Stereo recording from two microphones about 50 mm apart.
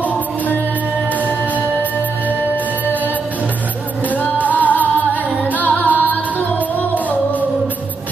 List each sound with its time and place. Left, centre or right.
4.1 s music: left